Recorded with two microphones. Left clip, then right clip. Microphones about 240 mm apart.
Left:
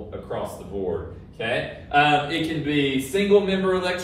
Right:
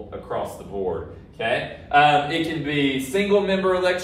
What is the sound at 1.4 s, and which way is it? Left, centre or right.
A man's voice, centre.